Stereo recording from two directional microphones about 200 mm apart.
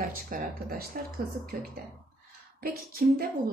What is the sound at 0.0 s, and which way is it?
A woman's voice, 45° right (ahead or behind).